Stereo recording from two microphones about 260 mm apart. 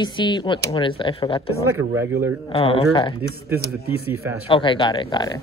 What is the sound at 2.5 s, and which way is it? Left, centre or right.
Speech, left.